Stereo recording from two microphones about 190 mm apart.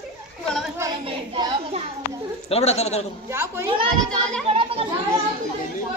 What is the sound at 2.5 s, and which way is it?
Speech, 35° left (ahead or behind).